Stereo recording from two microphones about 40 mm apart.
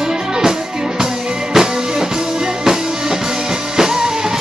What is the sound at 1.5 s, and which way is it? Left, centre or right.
Music, centre.